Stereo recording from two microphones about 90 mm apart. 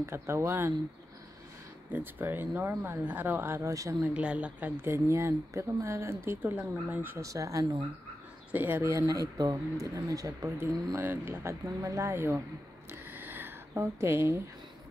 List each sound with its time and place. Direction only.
0.0 s speech: 30° right (ahead or behind)
1.9 s speech: 20° right (ahead or behind); by 3.9 s 35° right (ahead or behind)
4.0 s a woman's voice: 10° right (ahead or behind)
4.8 s speech: 30° right (ahead or behind)
6.9 s speech: 20° right (ahead or behind)
7.2 s speech: 35° right (ahead or behind)
8.5 s speech: 20° right (ahead or behind)
8.9 s speech: 40° right (ahead or behind)
11.0 s speech: 25° right (ahead or behind)
13.1 s a sound: 25° right (ahead or behind)